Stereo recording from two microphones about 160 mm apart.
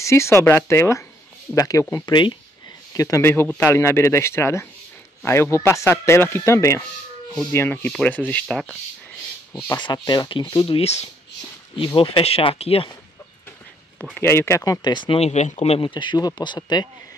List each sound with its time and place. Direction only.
0.0 s speech: 15° left (ahead or behind)
9.8 s speech: 30° left (ahead or behind)
10.8 s speech: 40° left (ahead or behind)
14.1 s speech: 15° left (ahead or behind)